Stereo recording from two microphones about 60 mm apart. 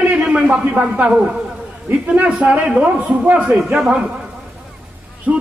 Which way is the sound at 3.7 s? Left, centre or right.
Centre.